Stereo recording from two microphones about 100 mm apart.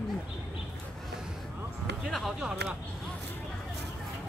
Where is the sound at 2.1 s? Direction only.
Centre (ahead or behind).